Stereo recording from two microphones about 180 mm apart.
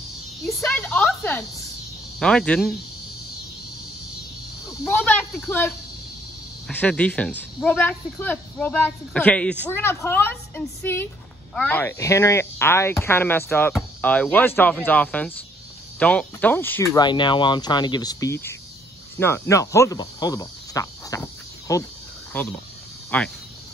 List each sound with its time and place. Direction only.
0.6 s speech: 10° left (ahead or behind)
4.8 s speech: 10° left (ahead or behind)
6.7 s speech: 5° left (ahead or behind)